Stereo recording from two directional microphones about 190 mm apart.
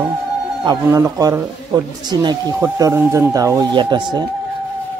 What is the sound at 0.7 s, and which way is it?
A man's voice, 15° right (ahead or behind).